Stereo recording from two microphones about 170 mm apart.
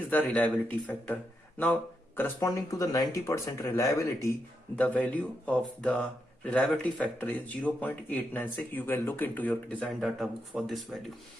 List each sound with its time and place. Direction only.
0.1 s speech: 10° left (ahead or behind)